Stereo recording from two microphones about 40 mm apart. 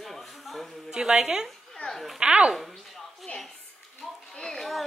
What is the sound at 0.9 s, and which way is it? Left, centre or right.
Speech, centre.